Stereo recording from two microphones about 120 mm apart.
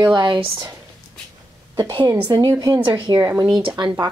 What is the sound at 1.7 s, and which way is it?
Speech, 35° right (ahead or behind).